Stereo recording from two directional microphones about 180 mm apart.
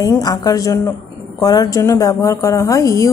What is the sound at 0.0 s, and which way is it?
A woman's voice, 20° left (ahead or behind).